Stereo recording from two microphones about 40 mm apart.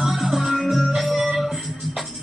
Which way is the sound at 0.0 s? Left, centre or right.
Centre.